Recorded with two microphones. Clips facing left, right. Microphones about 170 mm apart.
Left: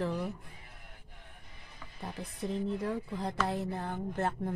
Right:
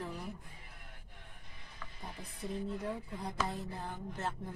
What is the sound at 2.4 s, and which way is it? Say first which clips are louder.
Speech: left 5 dB; 80° left.